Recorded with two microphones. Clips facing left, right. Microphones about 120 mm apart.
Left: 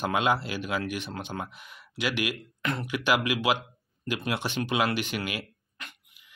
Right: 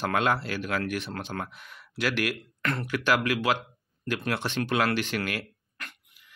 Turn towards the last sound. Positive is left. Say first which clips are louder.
# right 2 dB
turn(degrees=0)  # may be behind; listen again after turning